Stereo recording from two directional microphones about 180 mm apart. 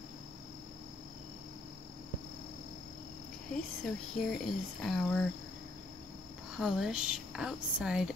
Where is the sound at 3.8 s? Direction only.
Centre (ahead or behind).